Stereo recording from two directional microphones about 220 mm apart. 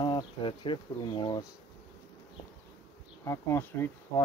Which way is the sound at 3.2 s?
10° left (ahead or behind).